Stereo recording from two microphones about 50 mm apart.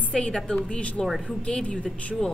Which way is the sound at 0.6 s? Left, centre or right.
Left.